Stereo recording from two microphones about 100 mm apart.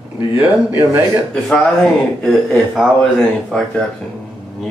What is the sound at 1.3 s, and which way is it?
A man's voice, 10° left (ahead or behind).